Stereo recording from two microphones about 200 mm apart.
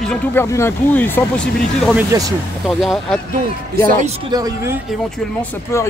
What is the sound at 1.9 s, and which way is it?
Speech, 15° right (ahead or behind).